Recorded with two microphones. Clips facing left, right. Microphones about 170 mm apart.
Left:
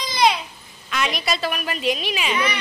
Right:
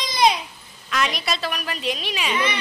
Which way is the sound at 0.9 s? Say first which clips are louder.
Even; centre (ahead or behind).